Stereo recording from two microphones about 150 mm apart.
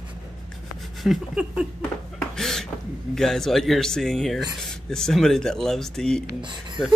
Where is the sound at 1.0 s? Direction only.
Centre (ahead or behind).